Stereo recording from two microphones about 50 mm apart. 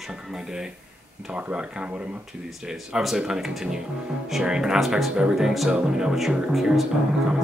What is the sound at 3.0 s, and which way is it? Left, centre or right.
Speech, centre.